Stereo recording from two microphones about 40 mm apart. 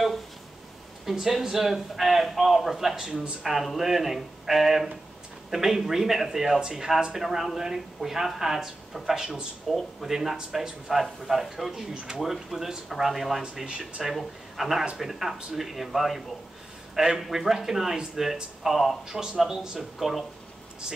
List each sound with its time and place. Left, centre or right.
1.0 s speech: centre
9.7 s speech: centre
10.3 s speech: centre
10.9 s speech: centre
11.9 s speech: right
12.2 s speech: centre
13.7 s speech: right
14.0 s speech: centre
19.0 s speech: centre